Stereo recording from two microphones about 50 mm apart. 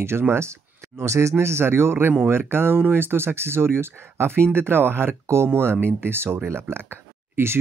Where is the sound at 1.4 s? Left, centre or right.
Right.